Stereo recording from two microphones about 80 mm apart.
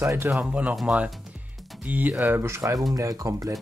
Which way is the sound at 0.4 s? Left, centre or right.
Centre.